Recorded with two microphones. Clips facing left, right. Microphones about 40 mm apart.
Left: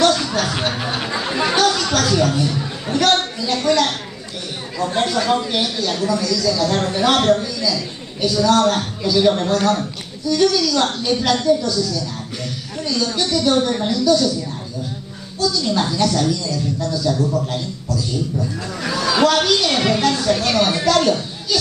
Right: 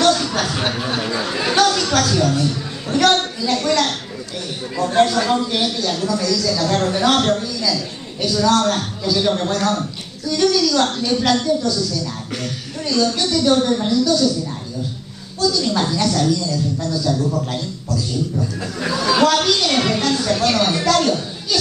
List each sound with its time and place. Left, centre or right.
0.0 s a sound: centre
0.7 s speech: centre
1.6 s a sound: centre
2.0 s a woman's voice: centre
4.7 s a woman's voice: centre
5.0 s a man's voice: centre
12.8 s a woman's voice: centre
13.7 s speech: centre
15.4 s a woman's voice: centre